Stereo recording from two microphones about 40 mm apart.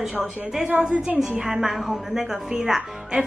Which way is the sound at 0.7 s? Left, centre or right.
Right.